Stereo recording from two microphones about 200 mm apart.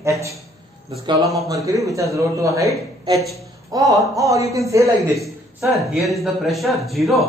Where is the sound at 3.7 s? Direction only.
15° right (ahead or behind).